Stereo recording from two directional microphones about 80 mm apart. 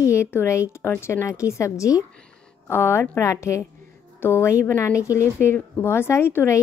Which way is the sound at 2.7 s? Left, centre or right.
Left.